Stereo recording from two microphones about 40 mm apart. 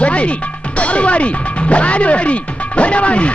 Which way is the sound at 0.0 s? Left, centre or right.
Left.